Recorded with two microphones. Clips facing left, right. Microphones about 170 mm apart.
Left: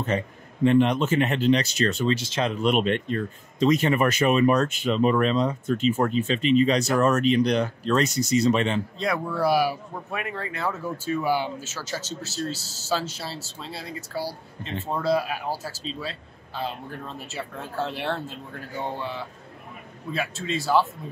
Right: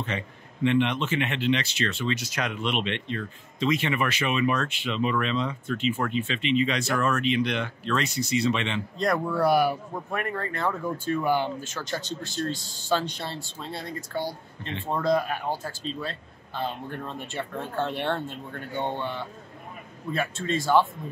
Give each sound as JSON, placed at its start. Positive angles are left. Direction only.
{"t": 0.1, "sound": "speech", "side_deg": 40}
{"t": 2.1, "sound": "speech", "side_deg": 30}
{"t": 2.6, "sound": "speech", "side_deg": 45}
{"t": 9.0, "sound": "speech", "side_deg": 0}